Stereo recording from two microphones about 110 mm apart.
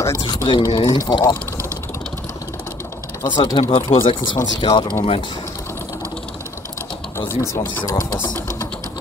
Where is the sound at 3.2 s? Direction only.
45° left (ahead or behind).